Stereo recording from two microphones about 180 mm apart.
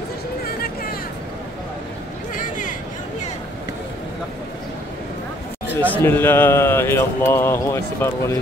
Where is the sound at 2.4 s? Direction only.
45° left (ahead or behind).